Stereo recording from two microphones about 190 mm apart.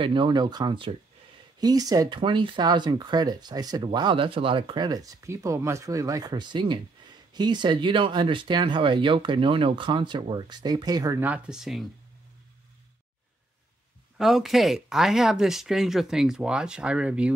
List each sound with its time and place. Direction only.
0.0 s speech: 25° right (ahead or behind); by 11.9 s centre (ahead or behind)
14.1 s speech: centre (ahead or behind)